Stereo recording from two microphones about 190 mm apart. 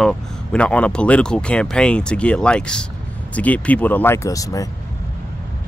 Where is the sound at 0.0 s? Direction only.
5° left (ahead or behind).